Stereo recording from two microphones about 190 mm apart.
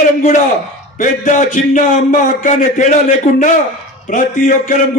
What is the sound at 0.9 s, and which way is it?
A man's voice, 45° left (ahead or behind).